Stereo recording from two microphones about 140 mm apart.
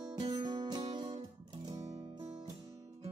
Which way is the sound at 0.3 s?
30° right (ahead or behind).